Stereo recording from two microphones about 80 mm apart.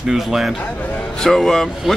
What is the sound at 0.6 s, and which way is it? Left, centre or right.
Speech, centre.